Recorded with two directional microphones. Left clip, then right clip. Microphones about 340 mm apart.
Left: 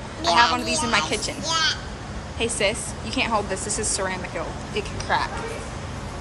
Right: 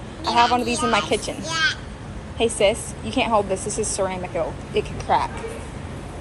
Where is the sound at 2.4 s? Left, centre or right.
Centre.